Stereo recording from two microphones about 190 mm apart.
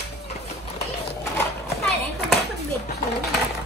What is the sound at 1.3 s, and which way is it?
Children playing, 5° left (ahead or behind).